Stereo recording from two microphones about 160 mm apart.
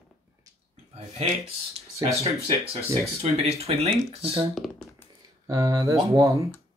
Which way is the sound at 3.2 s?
40° right (ahead or behind).